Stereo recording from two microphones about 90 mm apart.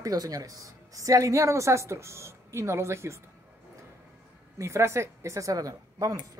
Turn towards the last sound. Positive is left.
turn(degrees=-40)  # may be behind; listen again after turning